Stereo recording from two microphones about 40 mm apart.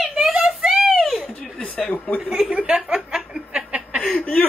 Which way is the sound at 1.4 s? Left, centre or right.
Left.